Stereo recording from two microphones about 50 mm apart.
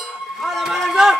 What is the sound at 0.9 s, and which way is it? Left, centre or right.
Run, centre.